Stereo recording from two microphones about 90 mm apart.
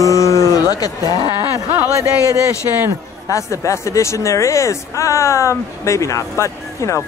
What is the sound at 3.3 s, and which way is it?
Speech, 35° left (ahead or behind).